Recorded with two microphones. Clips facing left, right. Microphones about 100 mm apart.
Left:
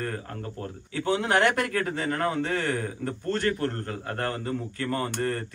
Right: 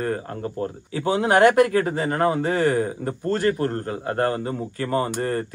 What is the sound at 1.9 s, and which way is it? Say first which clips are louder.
Speech: right 6 dB; 40° right (ahead or behind).